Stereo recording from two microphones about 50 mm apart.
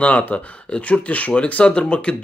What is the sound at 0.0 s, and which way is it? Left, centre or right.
Speech, left.